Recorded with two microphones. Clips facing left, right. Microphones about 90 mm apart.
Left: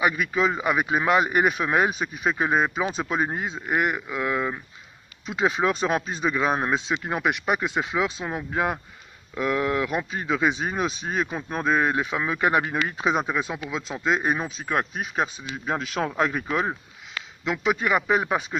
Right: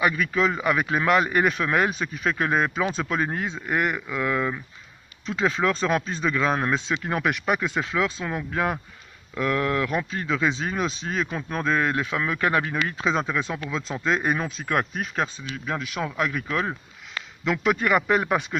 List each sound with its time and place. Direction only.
0.0 s speech: 15° left (ahead or behind)
15.6 s speech: 35° left (ahead or behind)
16.4 s speech: 20° left (ahead or behind)
17.5 s speech: 5° left (ahead or behind)